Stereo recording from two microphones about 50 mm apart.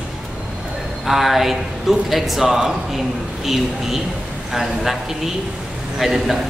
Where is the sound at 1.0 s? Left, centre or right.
Centre.